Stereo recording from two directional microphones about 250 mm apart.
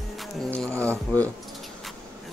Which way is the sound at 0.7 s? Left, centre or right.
Centre.